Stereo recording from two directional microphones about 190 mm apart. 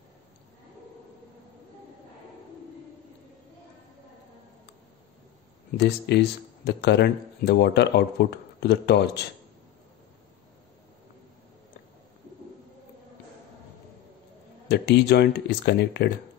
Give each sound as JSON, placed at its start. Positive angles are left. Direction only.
{"t": 5.8, "sound": "speech", "side_deg": 65}
{"t": 14.7, "sound": "speech", "side_deg": 60}